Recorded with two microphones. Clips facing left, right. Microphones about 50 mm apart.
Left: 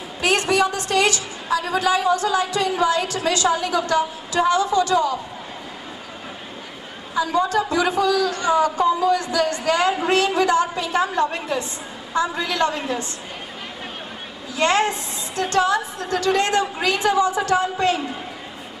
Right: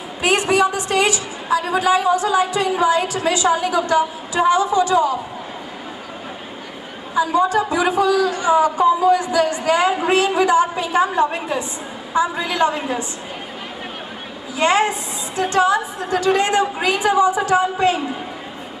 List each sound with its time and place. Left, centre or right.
0.2 s a man's voice: centre
7.2 s a man's voice: centre
14.6 s a man's voice: centre